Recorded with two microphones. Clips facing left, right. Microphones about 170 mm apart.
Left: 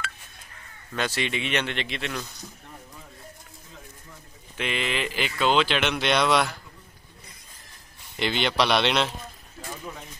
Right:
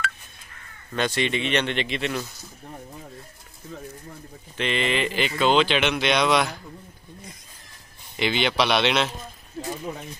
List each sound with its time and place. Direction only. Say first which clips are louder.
0.9 s speech: right 4 dB; 5° left (ahead or behind)
4.6 s speech: right 4 dB; 5° left (ahead or behind)
8.2 s speech: right 1 dB; 5° right (ahead or behind)